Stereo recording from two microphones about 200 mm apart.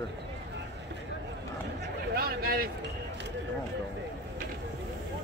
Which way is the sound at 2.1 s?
50° right (ahead or behind).